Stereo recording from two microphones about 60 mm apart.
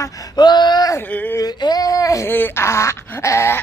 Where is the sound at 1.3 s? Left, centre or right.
Left.